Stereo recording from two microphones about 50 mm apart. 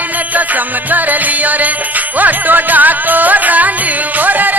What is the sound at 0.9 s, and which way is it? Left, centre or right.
Music, right.